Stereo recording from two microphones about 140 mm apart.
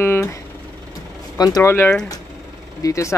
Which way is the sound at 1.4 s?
25° left (ahead or behind).